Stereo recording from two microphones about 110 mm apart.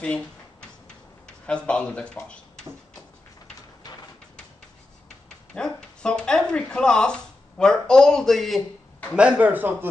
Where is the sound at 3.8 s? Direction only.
40° left (ahead or behind).